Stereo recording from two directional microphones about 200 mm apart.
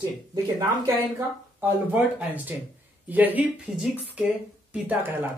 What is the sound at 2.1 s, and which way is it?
Speech, 10° right (ahead or behind).